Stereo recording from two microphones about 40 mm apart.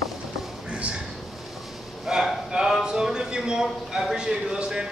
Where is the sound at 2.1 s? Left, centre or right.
Centre.